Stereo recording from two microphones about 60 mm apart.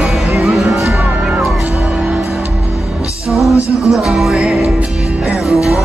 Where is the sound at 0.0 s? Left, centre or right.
Centre.